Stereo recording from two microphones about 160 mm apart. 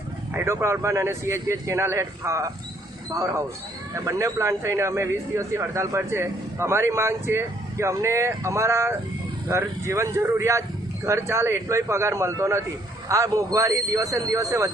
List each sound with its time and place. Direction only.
0.3 s speech: 15° right (ahead or behind)